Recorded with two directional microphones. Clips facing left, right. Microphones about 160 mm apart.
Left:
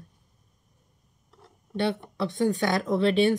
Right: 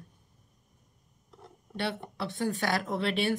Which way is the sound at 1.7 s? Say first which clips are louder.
Left 7 dB; 35° left (ahead or behind).